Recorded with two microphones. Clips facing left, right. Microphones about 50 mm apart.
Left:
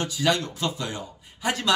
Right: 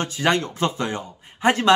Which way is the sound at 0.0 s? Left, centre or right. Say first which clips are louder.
Right 3 dB; right.